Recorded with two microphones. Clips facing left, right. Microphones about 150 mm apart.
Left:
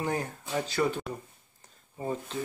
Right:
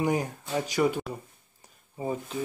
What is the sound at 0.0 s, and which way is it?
Speech, 15° right (ahead or behind).